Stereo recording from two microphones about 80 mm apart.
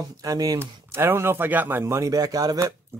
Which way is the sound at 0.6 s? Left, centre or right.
Right.